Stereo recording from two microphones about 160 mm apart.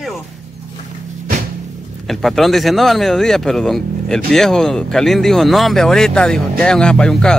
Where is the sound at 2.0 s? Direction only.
Centre (ahead or behind).